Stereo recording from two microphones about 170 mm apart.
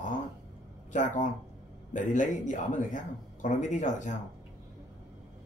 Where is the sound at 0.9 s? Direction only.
45° left (ahead or behind).